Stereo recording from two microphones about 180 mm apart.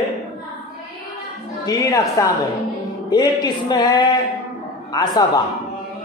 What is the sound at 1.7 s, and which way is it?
Speech, 20° left (ahead or behind).